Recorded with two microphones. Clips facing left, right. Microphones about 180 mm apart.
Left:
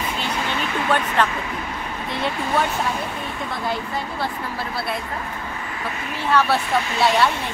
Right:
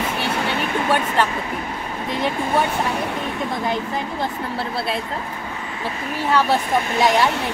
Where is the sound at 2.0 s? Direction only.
15° right (ahead or behind).